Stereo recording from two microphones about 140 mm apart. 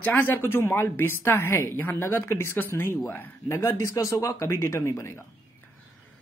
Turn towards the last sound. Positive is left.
turn(degrees=20)  # may be behind; listen again after turning